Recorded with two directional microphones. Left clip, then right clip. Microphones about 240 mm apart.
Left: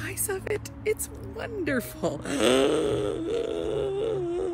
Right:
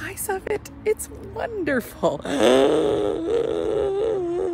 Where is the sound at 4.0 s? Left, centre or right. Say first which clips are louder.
Right 5 dB; centre.